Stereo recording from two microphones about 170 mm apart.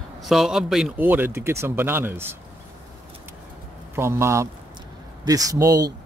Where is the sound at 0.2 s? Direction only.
Centre (ahead or behind).